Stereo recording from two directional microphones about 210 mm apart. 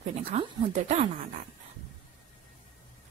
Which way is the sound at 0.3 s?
30° right (ahead or behind).